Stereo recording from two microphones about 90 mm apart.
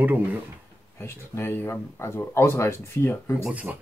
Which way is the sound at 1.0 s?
25° left (ahead or behind).